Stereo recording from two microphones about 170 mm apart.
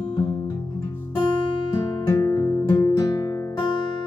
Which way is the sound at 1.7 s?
20° left (ahead or behind).